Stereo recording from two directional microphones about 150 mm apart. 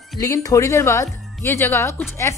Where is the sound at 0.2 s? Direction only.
25° left (ahead or behind).